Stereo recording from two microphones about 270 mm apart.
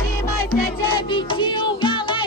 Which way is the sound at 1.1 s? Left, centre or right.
Centre.